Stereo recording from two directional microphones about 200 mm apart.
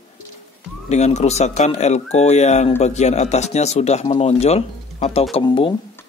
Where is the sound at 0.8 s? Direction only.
35° left (ahead or behind).